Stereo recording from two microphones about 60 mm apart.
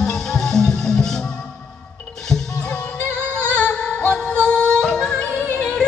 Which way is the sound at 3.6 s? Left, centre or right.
Left.